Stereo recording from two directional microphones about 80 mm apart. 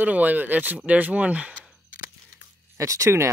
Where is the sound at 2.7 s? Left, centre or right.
Right.